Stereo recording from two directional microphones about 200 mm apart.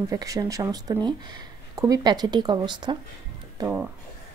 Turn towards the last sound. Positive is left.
turn(degrees=-10)  # may be behind; listen again after turning